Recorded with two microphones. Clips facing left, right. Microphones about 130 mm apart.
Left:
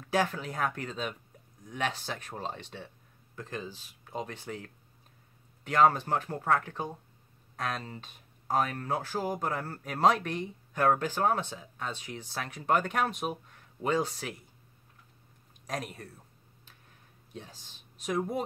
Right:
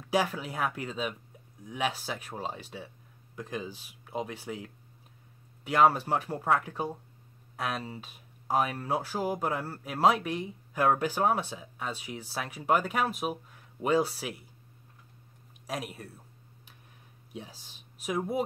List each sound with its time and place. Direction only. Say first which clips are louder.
0.1 s speech: right 1 dB; 10° right (ahead or behind)
15.6 s speech: even; 5° right (ahead or behind)
17.3 s speech: right 2 dB; 10° right (ahead or behind)